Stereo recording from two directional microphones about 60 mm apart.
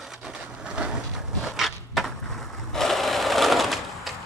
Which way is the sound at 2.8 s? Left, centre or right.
Centre.